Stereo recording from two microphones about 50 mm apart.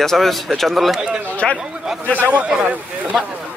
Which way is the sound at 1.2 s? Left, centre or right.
Left.